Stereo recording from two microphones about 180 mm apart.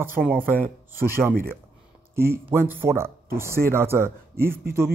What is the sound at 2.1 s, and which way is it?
Speech, 15° right (ahead or behind).